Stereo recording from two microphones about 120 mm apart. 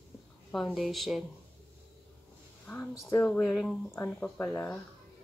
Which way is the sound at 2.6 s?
20° left (ahead or behind).